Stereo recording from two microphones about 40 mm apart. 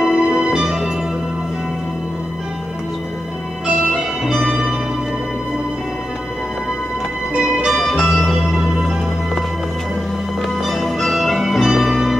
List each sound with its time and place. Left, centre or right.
0.0 s music: centre
3.6 s music: centre
4.3 s music: centre
7.3 s music: right
8.0 s music: centre
10.4 s music: centre